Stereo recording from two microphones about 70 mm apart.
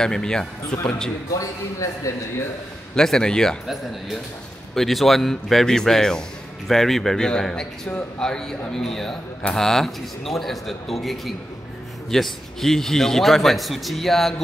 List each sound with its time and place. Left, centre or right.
0.0 s a man's voice: centre
1.4 s a man's voice: left
3.0 s a man's voice: centre
3.6 s a man's voice: centre